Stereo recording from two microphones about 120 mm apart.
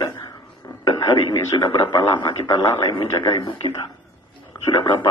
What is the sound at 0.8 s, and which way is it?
A man's voice, 25° left (ahead or behind).